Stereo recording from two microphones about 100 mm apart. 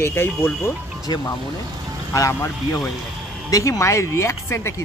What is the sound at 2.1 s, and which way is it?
Speech, 35° left (ahead or behind).